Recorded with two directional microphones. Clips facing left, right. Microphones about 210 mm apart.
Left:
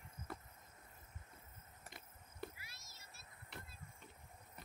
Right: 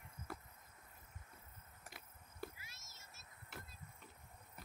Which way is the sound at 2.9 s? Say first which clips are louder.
Left 1 dB; 45° right (ahead or behind).